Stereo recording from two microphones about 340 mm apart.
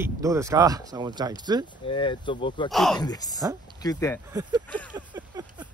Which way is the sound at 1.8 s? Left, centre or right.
Centre.